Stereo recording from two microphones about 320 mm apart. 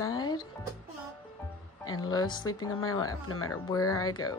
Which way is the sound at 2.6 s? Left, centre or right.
Left.